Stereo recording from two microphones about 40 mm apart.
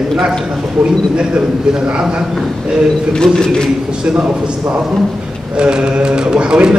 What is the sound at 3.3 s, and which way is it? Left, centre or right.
Speech, centre.